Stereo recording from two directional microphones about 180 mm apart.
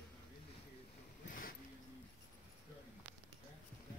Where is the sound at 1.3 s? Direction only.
50° left (ahead or behind).